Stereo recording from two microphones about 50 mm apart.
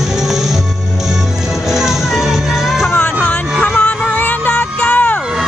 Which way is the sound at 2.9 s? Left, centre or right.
Left.